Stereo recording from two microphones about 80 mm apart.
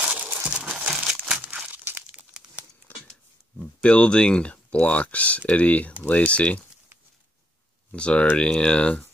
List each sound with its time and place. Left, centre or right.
0.0 s crumpling: centre
1.7 s crumpling: right
3.1 s a sound: centre
5.5 s speech: centre
7.9 s speech: centre